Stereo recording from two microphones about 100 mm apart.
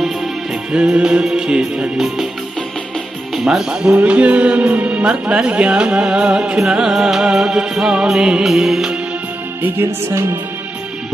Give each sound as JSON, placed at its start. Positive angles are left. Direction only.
{"t": 0.7, "sound": "speech", "side_deg": -10}
{"t": 3.3, "sound": "speech", "side_deg": -5}
{"t": 3.9, "sound": "speech", "side_deg": -15}
{"t": 9.6, "sound": "music", "side_deg": -20}